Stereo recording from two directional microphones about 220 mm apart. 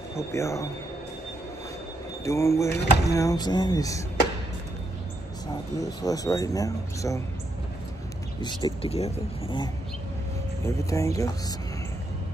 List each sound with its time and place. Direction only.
0.3 s speech: 15° left (ahead or behind)
2.2 s speech: 15° left (ahead or behind)
5.8 s speech: 15° left (ahead or behind)
8.4 s speech: 20° left (ahead or behind)
10.6 s speech: 15° left (ahead or behind)